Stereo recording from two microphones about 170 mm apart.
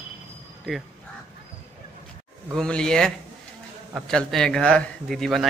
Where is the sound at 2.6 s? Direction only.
5° left (ahead or behind).